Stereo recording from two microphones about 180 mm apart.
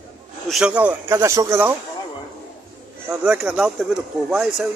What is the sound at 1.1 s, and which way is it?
Speech, 15° right (ahead or behind).